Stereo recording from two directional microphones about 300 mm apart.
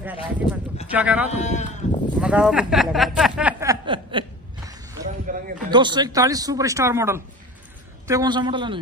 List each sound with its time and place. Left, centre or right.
0.0 s speech: centre
1.4 s sheep: left
2.1 s a sound: centre; by 5.4 s right
5.7 s speech: centre